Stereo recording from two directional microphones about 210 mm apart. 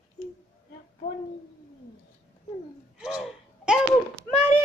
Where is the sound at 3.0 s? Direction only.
5° right (ahead or behind).